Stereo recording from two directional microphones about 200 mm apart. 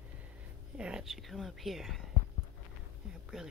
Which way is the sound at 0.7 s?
5° right (ahead or behind).